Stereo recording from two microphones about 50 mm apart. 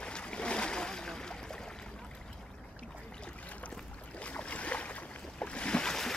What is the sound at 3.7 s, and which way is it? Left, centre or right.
Boat, left.